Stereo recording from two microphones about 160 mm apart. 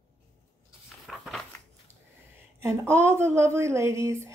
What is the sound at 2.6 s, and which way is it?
A woman's voice, 15° right (ahead or behind).